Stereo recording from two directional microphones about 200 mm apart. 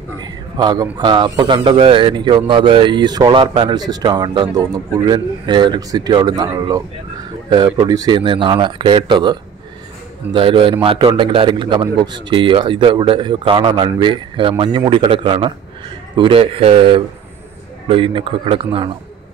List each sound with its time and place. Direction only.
0.6 s speech: 20° right (ahead or behind)